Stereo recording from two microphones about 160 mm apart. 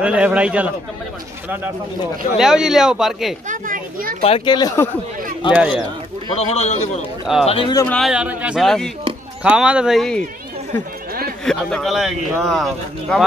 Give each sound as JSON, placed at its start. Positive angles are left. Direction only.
{"t": 0.0, "sound": "a man's voice", "side_deg": -5}
{"t": 2.3, "sound": "speech", "side_deg": -5}
{"t": 3.4, "sound": "children playing", "side_deg": -60}
{"t": 4.2, "sound": "a man's voice", "side_deg": 40}
{"t": 4.6, "sound": "speech", "side_deg": 25}
{"t": 5.5, "sound": "a man's voice", "side_deg": -10}
{"t": 6.3, "sound": "a man's voice", "side_deg": 40}
{"t": 7.9, "sound": "speech", "side_deg": 0}
{"t": 11.4, "sound": "speech", "side_deg": 0}